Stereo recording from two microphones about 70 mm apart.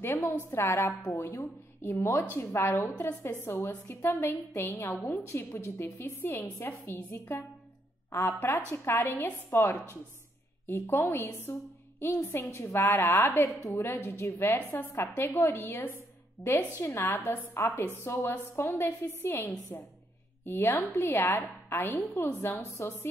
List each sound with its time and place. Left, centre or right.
0.5 s a woman's voice: left
1.4 s a woman's voice: left
16.8 s a woman's voice: left